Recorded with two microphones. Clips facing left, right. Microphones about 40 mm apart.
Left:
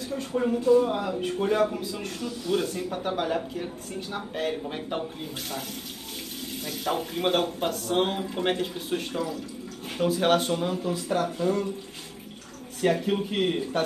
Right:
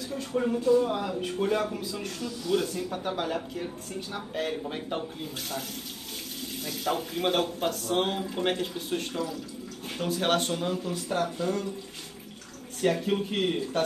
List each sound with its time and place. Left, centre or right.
0.1 s speech: centre
6.6 s speech: centre
12.8 s speech: centre